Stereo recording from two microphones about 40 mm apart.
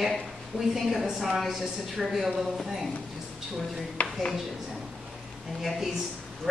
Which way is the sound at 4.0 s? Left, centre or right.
Left.